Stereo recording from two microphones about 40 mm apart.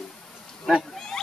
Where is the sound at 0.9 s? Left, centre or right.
Centre.